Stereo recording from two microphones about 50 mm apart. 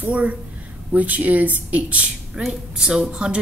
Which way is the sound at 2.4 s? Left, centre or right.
Centre.